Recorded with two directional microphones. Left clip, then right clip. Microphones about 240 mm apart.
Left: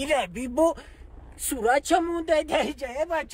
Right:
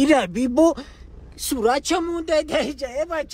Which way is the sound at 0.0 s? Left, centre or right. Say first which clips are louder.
Right 8 dB; right.